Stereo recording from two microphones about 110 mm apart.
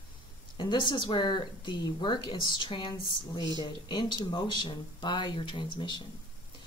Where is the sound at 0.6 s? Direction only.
45° left (ahead or behind).